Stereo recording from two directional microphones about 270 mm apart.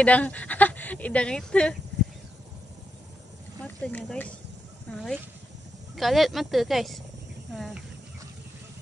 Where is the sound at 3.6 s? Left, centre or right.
Centre.